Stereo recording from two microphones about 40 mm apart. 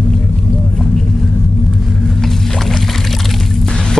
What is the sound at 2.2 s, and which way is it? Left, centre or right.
Boat, centre.